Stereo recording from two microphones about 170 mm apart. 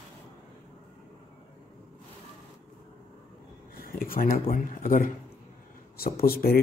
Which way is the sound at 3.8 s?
55° left (ahead or behind).